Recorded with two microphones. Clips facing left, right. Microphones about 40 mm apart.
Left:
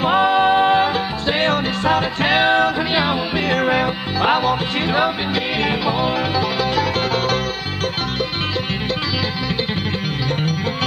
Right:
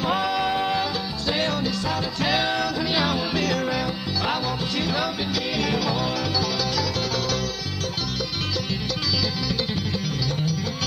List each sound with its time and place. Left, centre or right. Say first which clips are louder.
0.0 s music: left 8 dB; left